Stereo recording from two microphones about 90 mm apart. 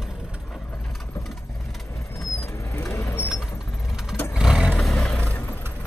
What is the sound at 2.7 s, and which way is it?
Vehicle, 30° left (ahead or behind).